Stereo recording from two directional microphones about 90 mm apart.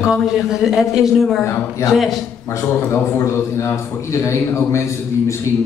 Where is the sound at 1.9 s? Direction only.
Centre (ahead or behind).